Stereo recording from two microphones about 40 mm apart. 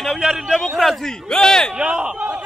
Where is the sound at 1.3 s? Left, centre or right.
Centre.